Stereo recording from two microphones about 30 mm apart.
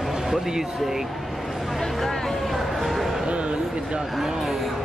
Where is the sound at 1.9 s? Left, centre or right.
Centre.